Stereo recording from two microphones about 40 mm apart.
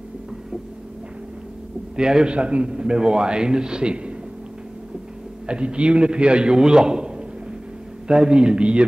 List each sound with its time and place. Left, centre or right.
2.0 s a man's voice: centre
5.5 s a man's voice: right
8.1 s a man's voice: right